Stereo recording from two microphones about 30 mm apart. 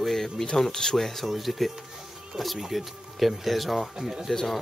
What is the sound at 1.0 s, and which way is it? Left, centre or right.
Speech, centre.